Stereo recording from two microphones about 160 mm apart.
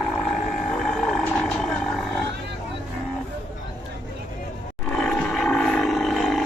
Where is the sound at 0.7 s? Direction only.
5° left (ahead or behind).